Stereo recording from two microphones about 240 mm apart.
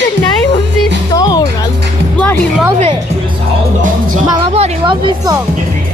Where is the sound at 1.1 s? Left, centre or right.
Centre.